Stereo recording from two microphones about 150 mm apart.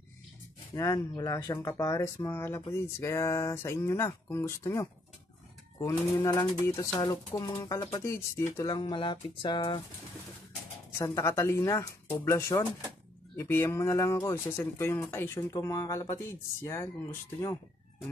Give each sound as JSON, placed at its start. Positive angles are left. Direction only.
{"t": 0.7, "sound": "speech", "side_deg": 25}
{"t": 11.0, "sound": "speech", "side_deg": 20}